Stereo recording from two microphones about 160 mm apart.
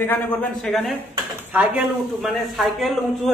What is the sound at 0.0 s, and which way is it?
Speech, 10° left (ahead or behind).